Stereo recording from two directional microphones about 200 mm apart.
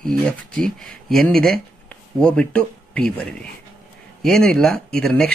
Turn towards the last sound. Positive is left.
turn(degrees=5)  # may be behind; listen again after turning